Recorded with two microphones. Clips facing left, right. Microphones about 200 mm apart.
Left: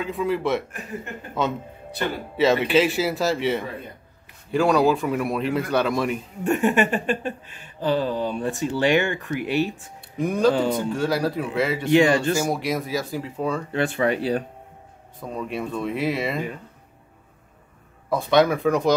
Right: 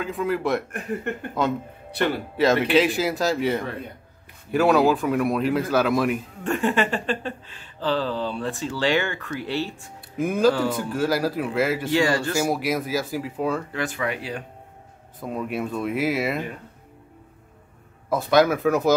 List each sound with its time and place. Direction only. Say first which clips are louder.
0.0 s speech: left 1 dB; centre (ahead or behind)
6.4 s a sound: left 3 dB; 15° left (ahead or behind)
10.1 s speech: even; 5° right (ahead or behind)
10.5 s speech: left 2 dB; 20° left (ahead or behind)
10.9 s speech: even; 5° right (ahead or behind)
11.9 s speech: left 4 dB; 20° left (ahead or behind)
12.4 s speech: right 1 dB; 5° right (ahead or behind)
13.7 s speech: left 5 dB; 30° left (ahead or behind)
15.1 s speech: right 1 dB; 5° right (ahead or behind)
18.1 s speech: even; centre (ahead or behind)